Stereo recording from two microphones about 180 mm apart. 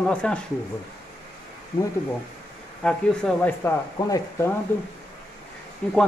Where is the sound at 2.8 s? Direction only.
5° left (ahead or behind).